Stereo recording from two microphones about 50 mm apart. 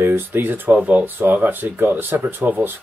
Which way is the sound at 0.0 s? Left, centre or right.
Right.